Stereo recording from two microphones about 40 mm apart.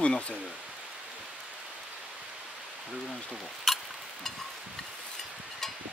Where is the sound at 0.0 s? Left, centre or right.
Left.